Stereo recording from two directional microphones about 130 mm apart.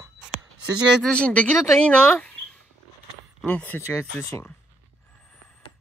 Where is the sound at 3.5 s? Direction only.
15° left (ahead or behind).